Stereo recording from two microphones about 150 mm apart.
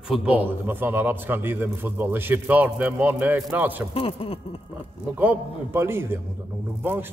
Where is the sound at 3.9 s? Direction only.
40° left (ahead or behind).